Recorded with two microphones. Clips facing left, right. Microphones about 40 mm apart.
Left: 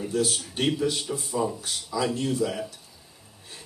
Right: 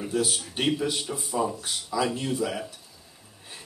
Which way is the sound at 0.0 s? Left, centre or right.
Centre.